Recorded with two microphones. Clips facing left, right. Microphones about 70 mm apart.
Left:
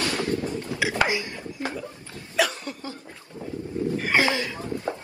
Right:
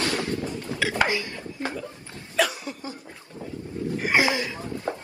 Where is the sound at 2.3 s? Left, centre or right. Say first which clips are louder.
Even; centre.